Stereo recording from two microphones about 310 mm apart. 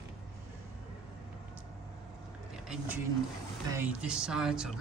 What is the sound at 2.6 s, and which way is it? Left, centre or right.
Speech, centre.